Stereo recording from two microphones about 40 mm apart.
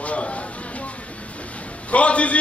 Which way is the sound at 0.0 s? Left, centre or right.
Left.